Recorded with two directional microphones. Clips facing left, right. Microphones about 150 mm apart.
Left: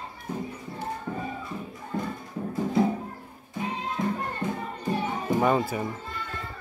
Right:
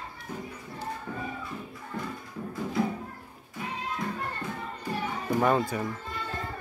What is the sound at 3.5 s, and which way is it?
Music, 20° left (ahead or behind).